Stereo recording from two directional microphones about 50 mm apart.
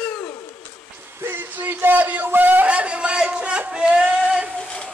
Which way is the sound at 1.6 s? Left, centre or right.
Right.